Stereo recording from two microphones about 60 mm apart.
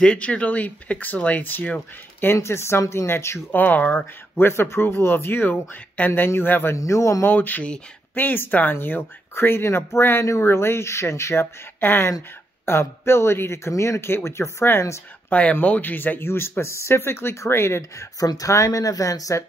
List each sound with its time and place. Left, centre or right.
0.0 s speech: centre
2.3 s speech: left
3.5 s speech: left
4.4 s speech: left
6.7 s speech: left
7.2 s speech: left
10.2 s speech: left
11.8 s speech: left
15.2 s speech: left
18.2 s speech: left